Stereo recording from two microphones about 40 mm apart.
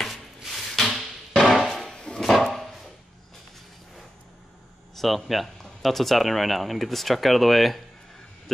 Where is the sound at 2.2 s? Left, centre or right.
Centre.